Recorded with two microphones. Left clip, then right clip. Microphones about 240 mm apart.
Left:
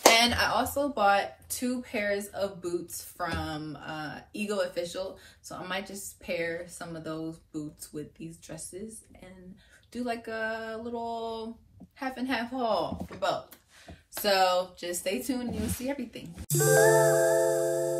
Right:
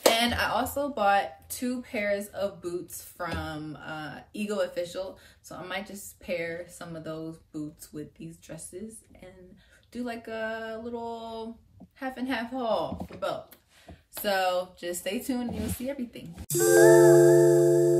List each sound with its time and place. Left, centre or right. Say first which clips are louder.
0.0 s speech: left 2 dB; centre
14.1 s speech: left 2 dB; centre